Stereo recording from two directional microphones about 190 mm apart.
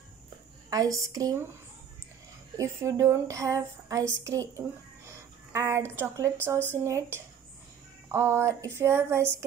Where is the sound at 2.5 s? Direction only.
15° right (ahead or behind).